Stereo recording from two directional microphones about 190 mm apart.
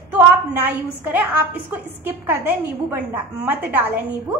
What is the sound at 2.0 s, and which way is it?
Speech, 10° right (ahead or behind).